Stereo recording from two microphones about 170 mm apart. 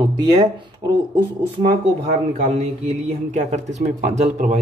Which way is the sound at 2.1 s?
40° right (ahead or behind).